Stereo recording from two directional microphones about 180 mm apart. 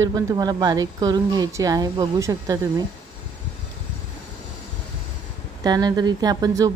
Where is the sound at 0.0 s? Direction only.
20° right (ahead or behind).